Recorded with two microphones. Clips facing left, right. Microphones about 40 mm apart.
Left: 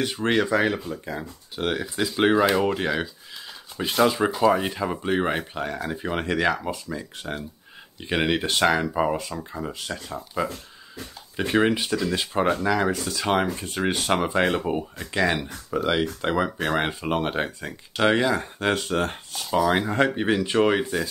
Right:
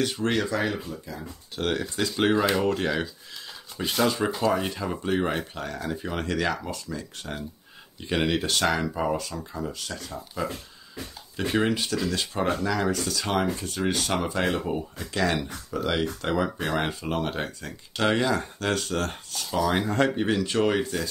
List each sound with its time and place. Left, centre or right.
0.0 s speech: left
0.8 s speech: left
1.6 s speech: centre